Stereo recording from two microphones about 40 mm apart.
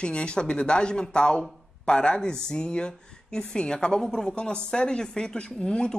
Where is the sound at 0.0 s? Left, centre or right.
Left.